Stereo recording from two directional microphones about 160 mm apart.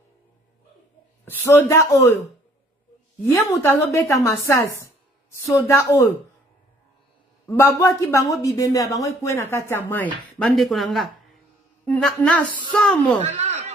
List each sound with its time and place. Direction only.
1.4 s speech: 15° left (ahead or behind)
3.3 s speech: 20° left (ahead or behind)
7.4 s speech: 15° left (ahead or behind)
10.4 s speech: centre (ahead or behind)
13.2 s speech: 40° right (ahead or behind)